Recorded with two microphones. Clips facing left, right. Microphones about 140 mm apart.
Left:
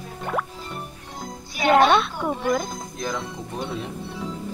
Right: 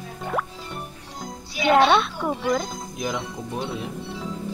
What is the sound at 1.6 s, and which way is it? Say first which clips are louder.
Music: left 1 dB; 45° left (ahead or behind).